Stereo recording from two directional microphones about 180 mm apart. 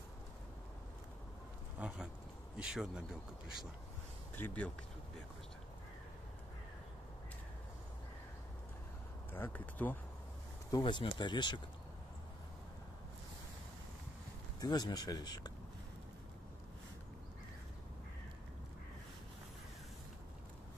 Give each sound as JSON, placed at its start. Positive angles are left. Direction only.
{"t": 1.8, "sound": "speech", "side_deg": -5}
{"t": 4.4, "sound": "speech", "side_deg": 10}
{"t": 9.3, "sound": "speech", "side_deg": 10}
{"t": 10.7, "sound": "speech", "side_deg": 25}
{"t": 14.6, "sound": "speech", "side_deg": 25}